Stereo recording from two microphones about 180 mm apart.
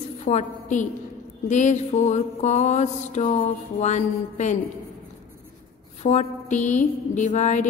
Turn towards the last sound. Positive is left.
turn(degrees=40)  # may be behind; listen again after turning